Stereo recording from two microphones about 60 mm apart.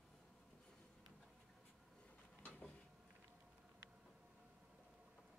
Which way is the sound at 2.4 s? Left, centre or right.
Left.